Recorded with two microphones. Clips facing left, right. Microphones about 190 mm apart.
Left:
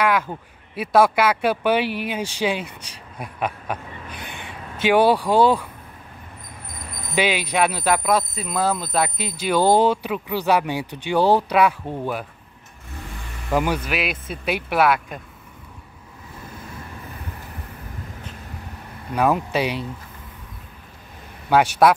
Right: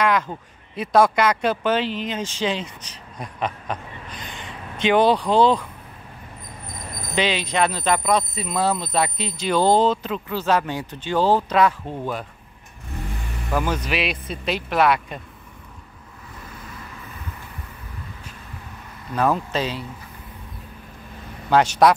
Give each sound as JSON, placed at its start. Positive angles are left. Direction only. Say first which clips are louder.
{"t": 0.0, "sound": "speech", "louder": "even", "side_deg": 5}
{"t": 4.2, "sound": "a sound", "louder": "even", "side_deg": 60}
{"t": 4.7, "sound": "speech", "louder": "left 1 dB", "side_deg": 10}
{"t": 7.2, "sound": "speech", "louder": "left 1 dB", "side_deg": 10}
{"t": 13.5, "sound": "speech", "louder": "left 2 dB", "side_deg": 20}
{"t": 13.8, "sound": "speech", "louder": "right 1 dB", "side_deg": 5}
{"t": 19.1, "sound": "speech", "louder": "left 1 dB", "side_deg": 10}
{"t": 21.8, "sound": "speech", "louder": "even", "side_deg": 5}